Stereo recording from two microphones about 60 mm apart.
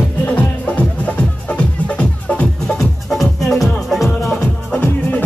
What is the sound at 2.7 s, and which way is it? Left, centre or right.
Music, centre.